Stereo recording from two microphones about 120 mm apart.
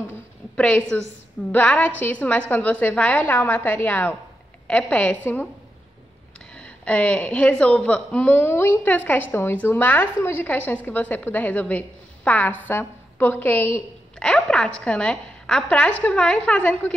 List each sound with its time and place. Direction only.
0.6 s a woman's voice: 10° left (ahead or behind)
6.5 s a woman's voice: 10° left (ahead or behind)